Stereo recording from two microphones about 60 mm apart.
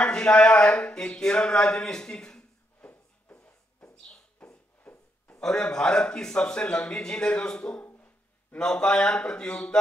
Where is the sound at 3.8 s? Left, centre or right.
Centre.